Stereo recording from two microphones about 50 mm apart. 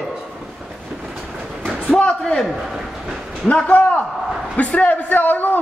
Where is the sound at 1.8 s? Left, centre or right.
Left.